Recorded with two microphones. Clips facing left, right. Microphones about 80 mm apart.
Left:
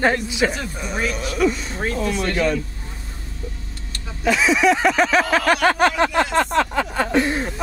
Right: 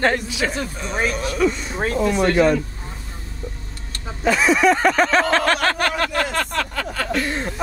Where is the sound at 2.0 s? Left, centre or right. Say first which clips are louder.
Right 5 dB; right.